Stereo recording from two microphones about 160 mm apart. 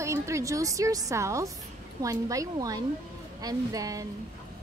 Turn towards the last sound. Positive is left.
turn(degrees=-20)  # may be behind; listen again after turning